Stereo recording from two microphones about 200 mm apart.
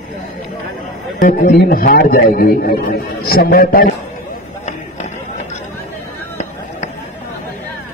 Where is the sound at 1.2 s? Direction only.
35° left (ahead or behind).